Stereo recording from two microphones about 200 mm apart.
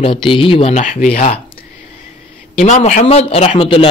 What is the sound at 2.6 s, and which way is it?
Speech, 35° left (ahead or behind).